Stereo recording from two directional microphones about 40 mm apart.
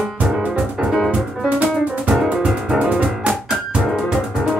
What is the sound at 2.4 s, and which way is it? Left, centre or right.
Music, centre.